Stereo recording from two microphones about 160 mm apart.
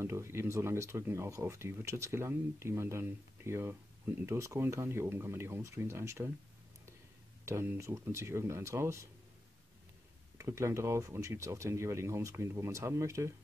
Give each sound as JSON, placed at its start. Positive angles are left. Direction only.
{"t": 0.0, "sound": "speech", "side_deg": -15}
{"t": 7.4, "sound": "speech", "side_deg": -15}
{"t": 10.3, "sound": "speech", "side_deg": -15}